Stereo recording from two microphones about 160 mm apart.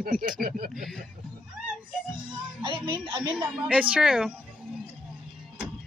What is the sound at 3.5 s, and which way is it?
Speech, 5° right (ahead or behind).